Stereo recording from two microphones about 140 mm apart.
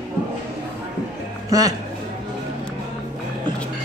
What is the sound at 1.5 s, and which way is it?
Speech, 25° right (ahead or behind).